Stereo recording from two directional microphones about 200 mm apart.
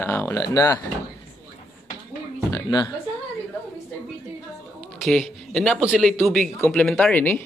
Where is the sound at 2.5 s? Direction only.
20° left (ahead or behind).